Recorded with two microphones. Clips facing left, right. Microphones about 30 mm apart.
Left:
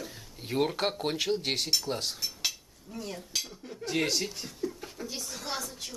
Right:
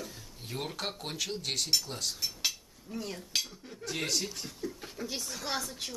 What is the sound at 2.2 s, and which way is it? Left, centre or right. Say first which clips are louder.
Dishes: even; centre.